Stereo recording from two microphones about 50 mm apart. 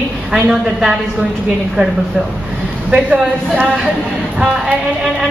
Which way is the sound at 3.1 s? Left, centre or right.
Right.